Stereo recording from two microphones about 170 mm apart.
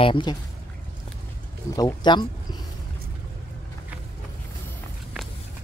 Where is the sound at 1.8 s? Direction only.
25° left (ahead or behind).